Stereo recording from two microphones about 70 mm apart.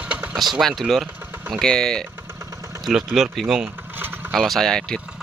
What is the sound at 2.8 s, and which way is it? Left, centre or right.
Speech, centre.